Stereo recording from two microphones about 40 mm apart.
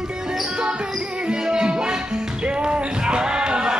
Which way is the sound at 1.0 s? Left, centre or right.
Right.